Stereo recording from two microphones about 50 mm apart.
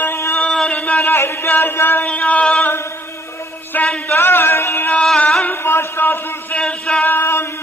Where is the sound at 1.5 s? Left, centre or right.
Left.